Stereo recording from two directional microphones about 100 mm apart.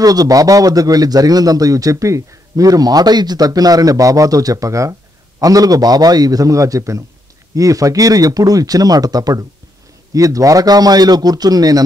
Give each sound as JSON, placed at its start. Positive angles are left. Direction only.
{"t": 0.0, "sound": "a man's voice", "side_deg": -40}